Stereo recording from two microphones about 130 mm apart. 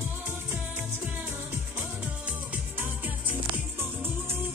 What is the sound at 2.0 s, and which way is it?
Music, 10° right (ahead or behind).